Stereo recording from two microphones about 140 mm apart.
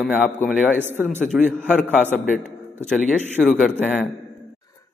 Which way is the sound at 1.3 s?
5° right (ahead or behind).